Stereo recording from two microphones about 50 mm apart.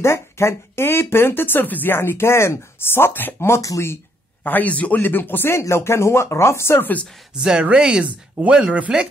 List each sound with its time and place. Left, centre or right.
0.0 s speech: left
2.0 s speech: left
3.3 s speech: left
4.4 s speech: left
6.8 s speech: left
7.3 s speech: centre
8.0 s speech: right
8.9 s speech: centre